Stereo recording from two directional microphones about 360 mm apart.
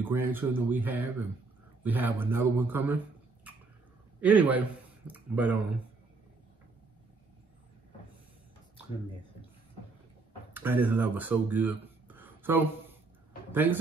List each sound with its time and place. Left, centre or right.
0.0 s speech: centre
4.2 s a man's voice: centre
10.5 s speech: centre